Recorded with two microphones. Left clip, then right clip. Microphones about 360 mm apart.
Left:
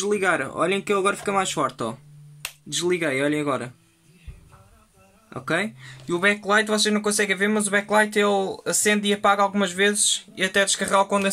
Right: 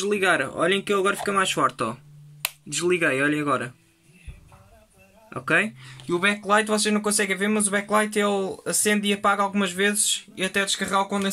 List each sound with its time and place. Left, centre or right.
0.2 s speech: left
2.9 s speech: left
5.3 s speech: left
5.8 s speech: centre